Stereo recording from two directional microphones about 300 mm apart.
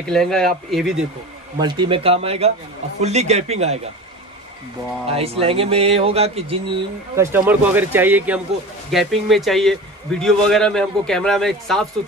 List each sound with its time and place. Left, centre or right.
0.0 s a man's voice: centre
1.6 s speech: centre
5.0 s speech: centre
7.2 s a man's voice: centre